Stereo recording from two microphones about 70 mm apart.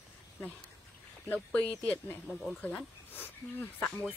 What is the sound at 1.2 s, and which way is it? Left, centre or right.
Speech, left.